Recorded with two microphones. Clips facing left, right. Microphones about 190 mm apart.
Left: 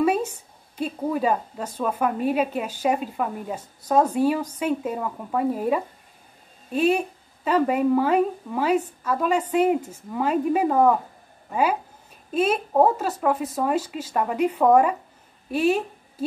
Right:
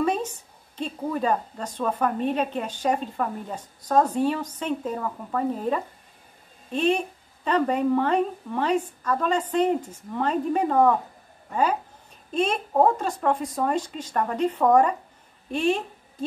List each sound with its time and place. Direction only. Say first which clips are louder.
0.0 s a sound: left 3 dB; 10° left (ahead or behind)
0.7 s a woman's voice: left 3 dB; 10° left (ahead or behind)
12.3 s a woman's voice: left 3 dB; 5° left (ahead or behind)